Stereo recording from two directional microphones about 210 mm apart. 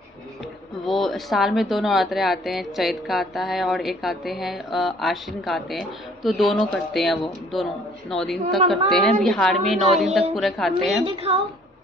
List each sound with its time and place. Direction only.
0.8 s a woman's voice: centre (ahead or behind)
11.1 s a woman's voice: 25° right (ahead or behind)